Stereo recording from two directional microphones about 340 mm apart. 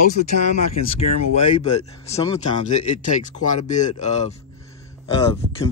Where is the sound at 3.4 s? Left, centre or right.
Left.